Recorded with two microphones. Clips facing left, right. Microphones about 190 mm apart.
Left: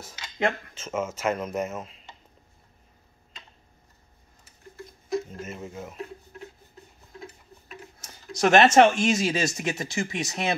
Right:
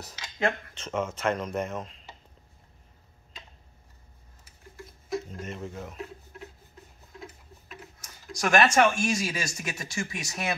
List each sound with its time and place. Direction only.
0.7 s speech: 5° left (ahead or behind)
5.1 s speech: 5° left (ahead or behind)
8.0 s speech: 25° left (ahead or behind)